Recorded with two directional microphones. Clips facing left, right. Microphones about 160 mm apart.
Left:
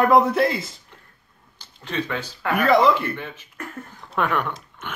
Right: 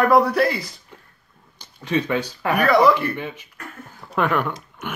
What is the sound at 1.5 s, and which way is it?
Speech, 15° right (ahead or behind).